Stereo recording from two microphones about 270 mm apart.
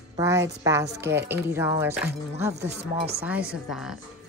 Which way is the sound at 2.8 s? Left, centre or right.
Right.